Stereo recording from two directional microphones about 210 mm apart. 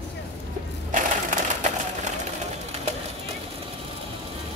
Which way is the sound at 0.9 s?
35° right (ahead or behind).